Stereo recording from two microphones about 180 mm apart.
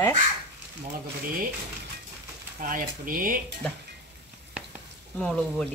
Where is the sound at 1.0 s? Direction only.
55° right (ahead or behind).